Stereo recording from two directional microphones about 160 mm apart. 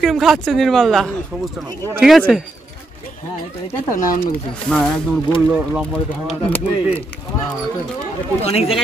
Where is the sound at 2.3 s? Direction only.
Centre (ahead or behind).